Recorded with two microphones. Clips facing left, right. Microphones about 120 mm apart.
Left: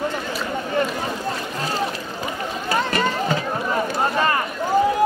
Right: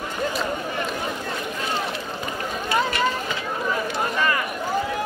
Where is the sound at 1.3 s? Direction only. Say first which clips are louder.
Left 1 dB; 35° left (ahead or behind).